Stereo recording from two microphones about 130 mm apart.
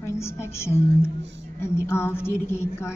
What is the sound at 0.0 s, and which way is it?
A woman's voice, 20° left (ahead or behind).